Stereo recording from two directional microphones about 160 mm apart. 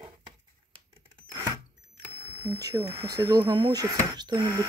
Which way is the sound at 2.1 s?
15° right (ahead or behind).